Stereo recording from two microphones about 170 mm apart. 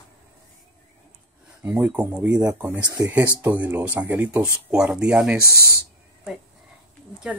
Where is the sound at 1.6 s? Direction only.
10° right (ahead or behind).